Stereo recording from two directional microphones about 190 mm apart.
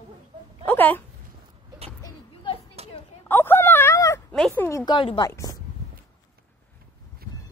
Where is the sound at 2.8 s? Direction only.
35° right (ahead or behind).